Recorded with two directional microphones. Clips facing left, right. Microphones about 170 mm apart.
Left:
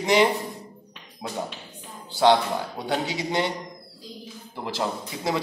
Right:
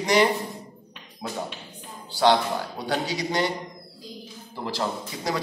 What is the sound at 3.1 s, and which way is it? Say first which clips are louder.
Speech: even; 20° left (ahead or behind).